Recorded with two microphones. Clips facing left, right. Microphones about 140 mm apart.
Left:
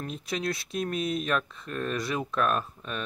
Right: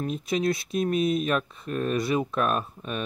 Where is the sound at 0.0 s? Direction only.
Centre (ahead or behind).